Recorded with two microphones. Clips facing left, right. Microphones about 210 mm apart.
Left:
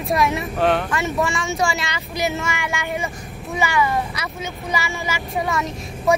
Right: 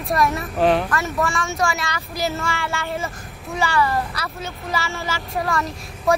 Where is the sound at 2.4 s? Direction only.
15° left (ahead or behind).